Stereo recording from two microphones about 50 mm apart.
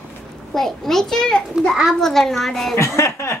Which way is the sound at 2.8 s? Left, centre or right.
Left.